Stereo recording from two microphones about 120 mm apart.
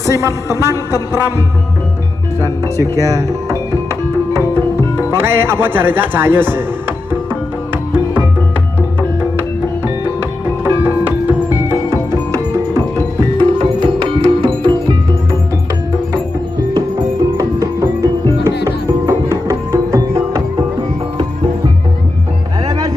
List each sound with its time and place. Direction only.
0.0 s speech: 25° right (ahead or behind)
3.0 s music: 30° right (ahead or behind)
11.2 s music: 20° right (ahead or behind)
13.4 s music: 50° right (ahead or behind)
17.4 s music: 30° right (ahead or behind)
22.7 s music: 30° right (ahead or behind)